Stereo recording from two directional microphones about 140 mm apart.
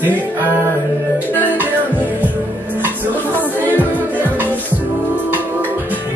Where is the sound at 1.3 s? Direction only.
10° left (ahead or behind).